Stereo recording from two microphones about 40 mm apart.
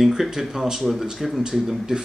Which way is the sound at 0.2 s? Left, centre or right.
Centre.